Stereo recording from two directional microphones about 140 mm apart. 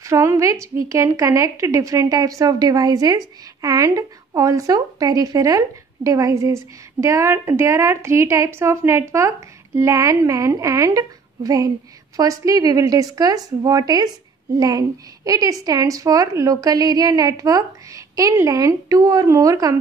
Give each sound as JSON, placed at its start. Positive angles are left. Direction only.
{"t": 0.0, "sound": "a woman's voice", "side_deg": -20}